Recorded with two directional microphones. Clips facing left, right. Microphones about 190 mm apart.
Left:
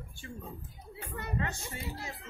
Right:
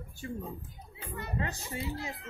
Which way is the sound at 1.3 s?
35° right (ahead or behind).